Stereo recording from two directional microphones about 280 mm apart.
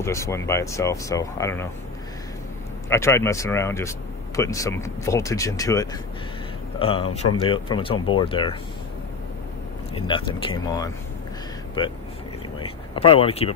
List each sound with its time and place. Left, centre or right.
0.0 s speech: centre
2.9 s speech: centre
9.9 s speech: centre
12.5 s a sound: centre